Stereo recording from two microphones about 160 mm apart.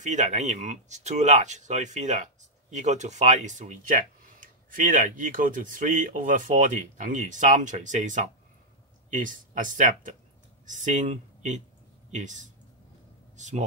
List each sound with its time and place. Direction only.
0.0 s a man's voice: 50° right (ahead or behind)